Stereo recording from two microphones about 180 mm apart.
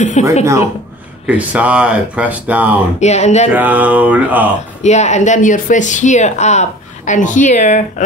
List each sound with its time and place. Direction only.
0.2 s speech: 40° left (ahead or behind)
1.2 s speech: 5° right (ahead or behind)
3.0 s speech: 40° left (ahead or behind)
3.5 s speech: 10° right (ahead or behind)
4.8 s speech: 40° left (ahead or behind)